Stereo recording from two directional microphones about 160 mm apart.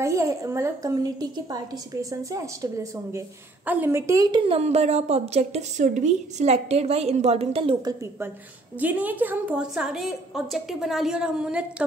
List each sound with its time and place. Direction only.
0.0 s a woman's voice: 20° right (ahead or behind)
4.4 s a woman's voice: 40° right (ahead or behind)
7.8 s a woman's voice: 20° right (ahead or behind)